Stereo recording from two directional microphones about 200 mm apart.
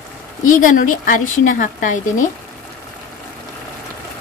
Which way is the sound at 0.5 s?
40° left (ahead or behind).